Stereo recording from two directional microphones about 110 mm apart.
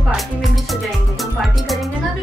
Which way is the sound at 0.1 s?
Centre (ahead or behind).